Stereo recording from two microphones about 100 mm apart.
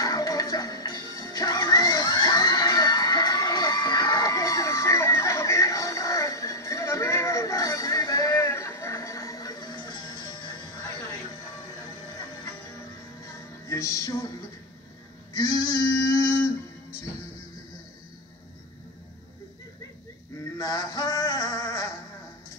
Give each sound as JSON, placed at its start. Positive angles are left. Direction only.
{"t": 0.0, "sound": "music", "side_deg": 35}
{"t": 13.2, "sound": "music", "side_deg": 30}
{"t": 15.3, "sound": "male singing", "side_deg": 45}
{"t": 20.5, "sound": "male singing", "side_deg": 40}